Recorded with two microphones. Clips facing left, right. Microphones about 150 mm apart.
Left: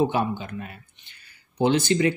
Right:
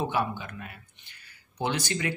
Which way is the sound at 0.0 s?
25° left (ahead or behind).